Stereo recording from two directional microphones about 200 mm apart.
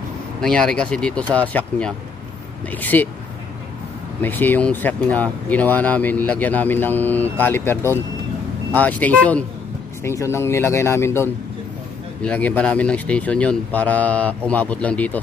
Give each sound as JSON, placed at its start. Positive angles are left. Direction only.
{"t": 0.4, "sound": "speech", "side_deg": 5}
{"t": 4.2, "sound": "speech", "side_deg": 10}